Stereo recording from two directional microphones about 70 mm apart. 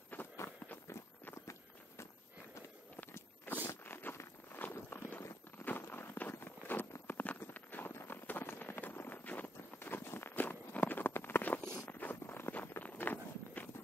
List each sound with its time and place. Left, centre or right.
0.1 s run: left
1.3 s walk: left
3.1 s walk: left
3.6 s zipper: left
4.8 s walk: left
7.1 s clip-clop: left
8.3 s clip-clop: left
11.9 s walk: left